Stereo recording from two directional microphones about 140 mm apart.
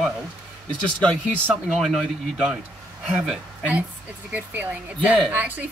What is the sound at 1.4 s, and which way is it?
A woman's voice, centre (ahead or behind).